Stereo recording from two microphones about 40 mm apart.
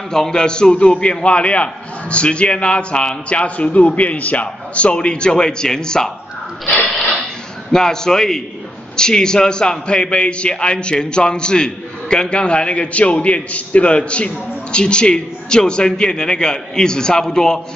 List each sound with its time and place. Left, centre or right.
0.1 s a man's voice: centre
6.6 s speech: left
7.7 s a man's voice: centre